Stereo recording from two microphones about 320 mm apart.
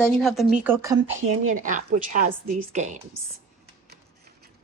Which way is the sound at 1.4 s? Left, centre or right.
Right.